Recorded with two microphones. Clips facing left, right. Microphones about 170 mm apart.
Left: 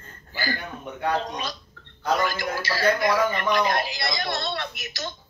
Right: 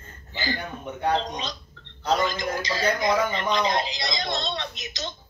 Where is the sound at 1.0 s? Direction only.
20° right (ahead or behind).